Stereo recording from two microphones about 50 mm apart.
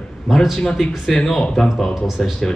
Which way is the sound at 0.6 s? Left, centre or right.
Centre.